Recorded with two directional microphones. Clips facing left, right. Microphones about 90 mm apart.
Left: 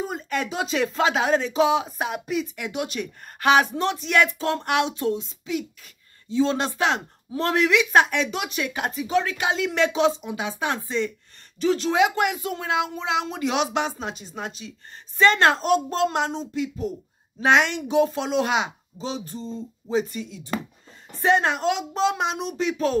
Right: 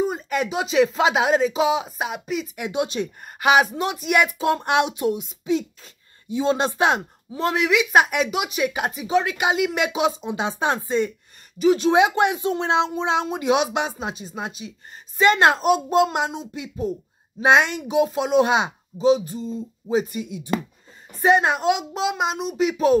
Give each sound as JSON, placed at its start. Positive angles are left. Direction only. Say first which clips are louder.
{"t": 0.0, "sound": "speech", "louder": "right 4 dB", "side_deg": -10}
{"t": 2.5, "sound": "speech", "louder": "right 4 dB", "side_deg": -20}
{"t": 3.3, "sound": "speech", "louder": "right 1 dB", "side_deg": -10}
{"t": 7.3, "sound": "speech", "louder": "even", "side_deg": -5}
{"t": 10.2, "sound": "speech", "louder": "right 4 dB", "side_deg": -25}
{"t": 11.5, "sound": "speech", "louder": "right 5 dB", "side_deg": -15}